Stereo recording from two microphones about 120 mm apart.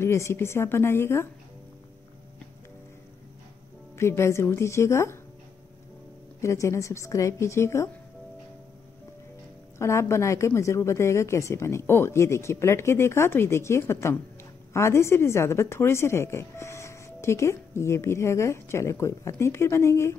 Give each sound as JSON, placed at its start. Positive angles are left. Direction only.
{"t": 0.0, "sound": "a woman's voice", "side_deg": 20}
{"t": 3.9, "sound": "a woman's voice", "side_deg": 20}
{"t": 6.4, "sound": "a woman's voice", "side_deg": 25}
{"t": 9.8, "sound": "a woman's voice", "side_deg": 25}